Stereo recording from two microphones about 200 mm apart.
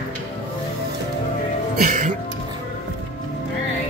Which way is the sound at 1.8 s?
40° right (ahead or behind).